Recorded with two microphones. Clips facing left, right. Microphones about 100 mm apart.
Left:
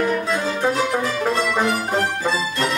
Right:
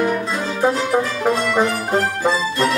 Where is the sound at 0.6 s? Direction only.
10° right (ahead or behind).